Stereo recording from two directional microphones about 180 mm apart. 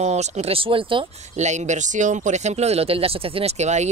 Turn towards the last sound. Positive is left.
turn(degrees=-40)  # may be behind; listen again after turning